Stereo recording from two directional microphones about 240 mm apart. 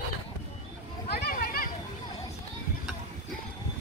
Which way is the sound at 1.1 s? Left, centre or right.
Left.